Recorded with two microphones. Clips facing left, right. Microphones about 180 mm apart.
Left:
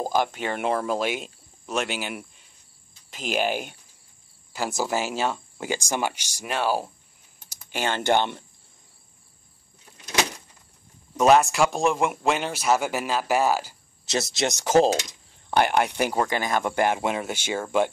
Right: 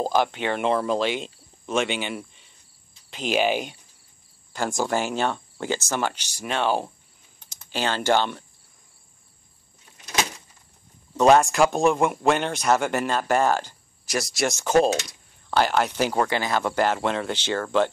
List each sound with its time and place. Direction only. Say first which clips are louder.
0.6 s speech: right 2 dB; 5° left (ahead or behind)
3.3 s speech: right 3 dB; 45° left (ahead or behind)
4.5 s speech: right 2 dB; 5° left (ahead or behind)
7.5 s typing: right 1 dB; 15° left (ahead or behind)
8.1 s cricket: even; 20° left (ahead or behind)
11.1 s speech: right 1 dB; 5° left (ahead or behind)
14.0 s speech: even; 25° left (ahead or behind)